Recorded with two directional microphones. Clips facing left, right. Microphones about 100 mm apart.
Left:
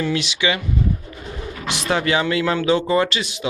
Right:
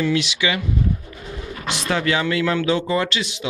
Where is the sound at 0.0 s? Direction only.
35° left (ahead or behind).